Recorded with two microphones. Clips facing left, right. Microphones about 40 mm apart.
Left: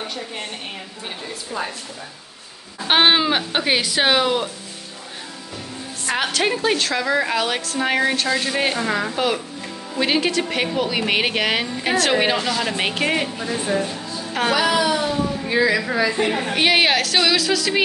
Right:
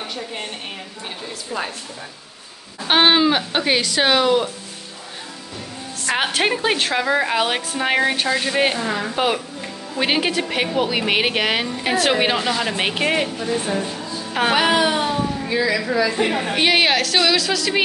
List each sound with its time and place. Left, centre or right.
0.1 s a woman's voice: centre
2.9 s a woman's voice: centre
6.1 s a woman's voice: right
13.7 s a woman's voice: centre
14.5 s speech: right
15.4 s a woman's voice: centre
16.2 s a woman's voice: centre